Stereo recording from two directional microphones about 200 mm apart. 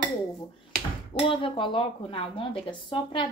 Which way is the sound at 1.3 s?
25° left (ahead or behind).